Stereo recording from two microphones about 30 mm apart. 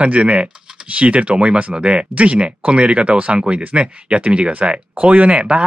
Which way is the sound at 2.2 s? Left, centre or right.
Right.